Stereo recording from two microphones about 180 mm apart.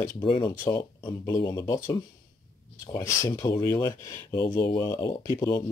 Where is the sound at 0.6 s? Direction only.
15° left (ahead or behind).